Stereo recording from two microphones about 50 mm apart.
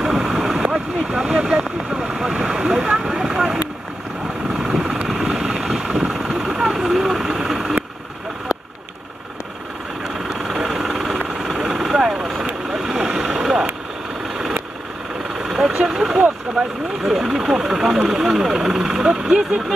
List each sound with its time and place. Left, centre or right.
0.0 s vehicle: centre
2.5 s a sound: centre
4.6 s vehicle: centre
10.0 s vehicle: centre
15.4 s vehicle: centre
15.7 s vehicle: right
17.0 s vehicle: centre